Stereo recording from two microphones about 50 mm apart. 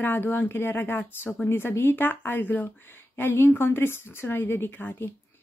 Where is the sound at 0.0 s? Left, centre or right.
Left.